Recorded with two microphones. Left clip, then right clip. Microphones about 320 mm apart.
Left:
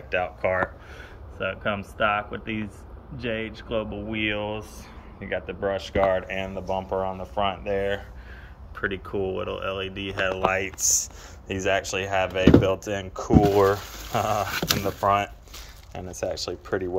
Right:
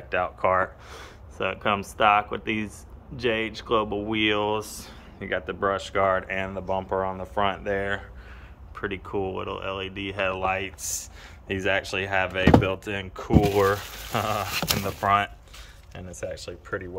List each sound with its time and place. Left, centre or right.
0.1 s speech: centre